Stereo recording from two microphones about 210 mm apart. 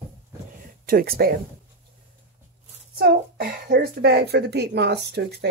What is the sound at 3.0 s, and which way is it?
Speech, 45° right (ahead or behind).